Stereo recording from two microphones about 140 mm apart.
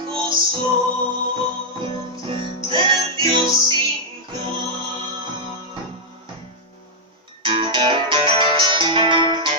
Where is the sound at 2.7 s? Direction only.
35° right (ahead or behind).